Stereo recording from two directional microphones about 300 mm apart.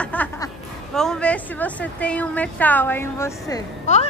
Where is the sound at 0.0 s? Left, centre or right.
Centre.